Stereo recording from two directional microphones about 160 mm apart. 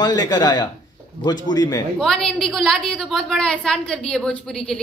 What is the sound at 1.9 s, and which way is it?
A woman's voice, 5° left (ahead or behind).